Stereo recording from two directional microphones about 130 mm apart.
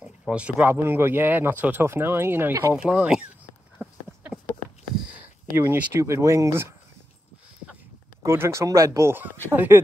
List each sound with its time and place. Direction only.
0.3 s speech: 10° right (ahead or behind)
2.7 s speech: 10° right (ahead or behind)
3.7 s a sound: 5° right (ahead or behind)
5.0 s speech: 15° right (ahead or behind)
8.2 s speech: 20° right (ahead or behind)